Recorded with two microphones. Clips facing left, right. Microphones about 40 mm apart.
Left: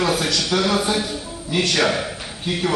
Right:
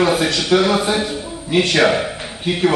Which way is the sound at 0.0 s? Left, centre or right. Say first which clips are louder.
Right 4 dB; centre.